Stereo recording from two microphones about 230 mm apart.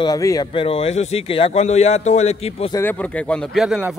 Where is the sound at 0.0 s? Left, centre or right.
Centre.